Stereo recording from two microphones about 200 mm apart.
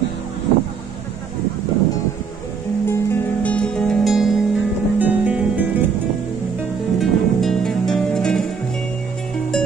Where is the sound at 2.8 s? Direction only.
10° left (ahead or behind); by 5.6 s 5° right (ahead or behind).